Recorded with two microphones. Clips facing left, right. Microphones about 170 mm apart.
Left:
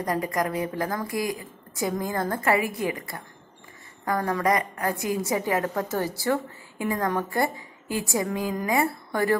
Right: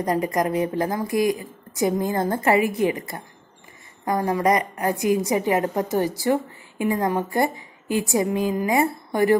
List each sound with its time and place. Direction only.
0.0 s a woman's voice: 20° right (ahead or behind)